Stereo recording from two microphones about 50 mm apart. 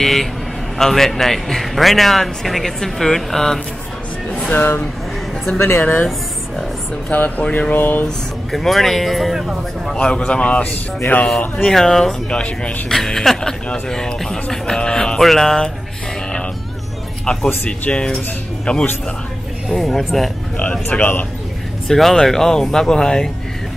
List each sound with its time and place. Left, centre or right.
0.0 s a man's voice: centre
4.5 s speech: left
7.1 s speech: left
8.5 s a man's voice: centre
10.0 s speech: left
11.7 s speech: centre
12.4 s speech: left
12.8 s speech: centre
15.1 s a man's voice: centre
17.6 s speech: centre
19.7 s a man's voice: centre
21.0 s speech: left
21.8 s speech: centre